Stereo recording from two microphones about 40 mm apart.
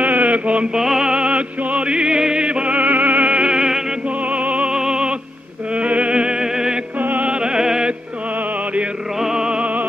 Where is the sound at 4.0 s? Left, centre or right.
Right.